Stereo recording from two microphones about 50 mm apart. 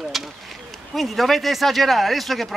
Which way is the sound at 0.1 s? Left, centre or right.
Centre.